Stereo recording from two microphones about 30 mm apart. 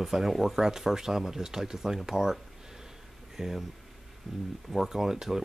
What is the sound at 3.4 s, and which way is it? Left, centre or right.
Speech, centre.